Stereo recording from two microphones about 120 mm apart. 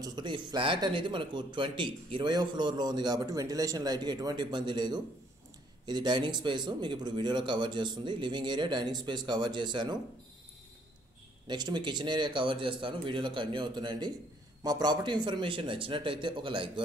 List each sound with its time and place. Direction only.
0.0 s a man's voice: 40° right (ahead or behind)
11.4 s a man's voice: 35° right (ahead or behind)